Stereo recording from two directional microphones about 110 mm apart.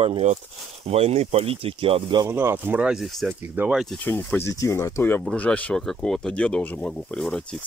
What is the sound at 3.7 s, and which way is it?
Speech, 5° right (ahead or behind).